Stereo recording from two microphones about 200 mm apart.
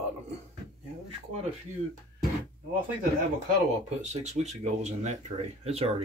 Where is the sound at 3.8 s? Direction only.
35° right (ahead or behind).